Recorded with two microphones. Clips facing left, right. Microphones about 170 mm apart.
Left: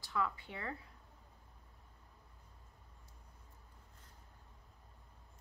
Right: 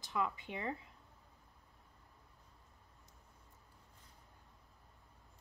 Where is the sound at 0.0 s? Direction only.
20° right (ahead or behind).